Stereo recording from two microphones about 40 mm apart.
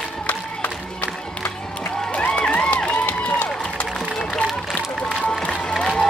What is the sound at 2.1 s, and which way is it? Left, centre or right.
Run, left.